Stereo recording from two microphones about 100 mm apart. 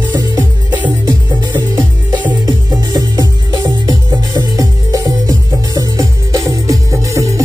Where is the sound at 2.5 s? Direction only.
40° right (ahead or behind).